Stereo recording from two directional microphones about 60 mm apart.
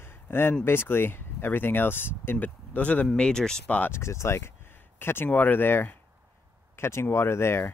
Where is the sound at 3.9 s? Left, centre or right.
Left.